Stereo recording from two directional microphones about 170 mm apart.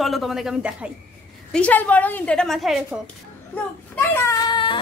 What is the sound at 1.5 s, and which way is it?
A woman's voice, 10° left (ahead or behind).